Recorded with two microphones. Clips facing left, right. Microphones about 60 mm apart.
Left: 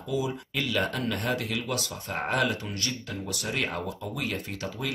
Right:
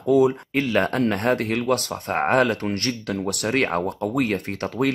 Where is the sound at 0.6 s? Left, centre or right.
Right.